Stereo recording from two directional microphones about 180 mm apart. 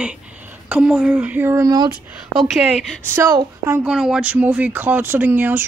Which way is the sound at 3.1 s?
20° right (ahead or behind).